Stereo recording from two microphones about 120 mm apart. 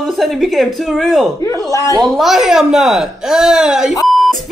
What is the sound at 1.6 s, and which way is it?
Speech, 25° left (ahead or behind).